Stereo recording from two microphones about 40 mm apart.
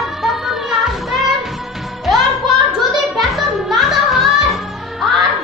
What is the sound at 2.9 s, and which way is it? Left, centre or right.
Music, centre.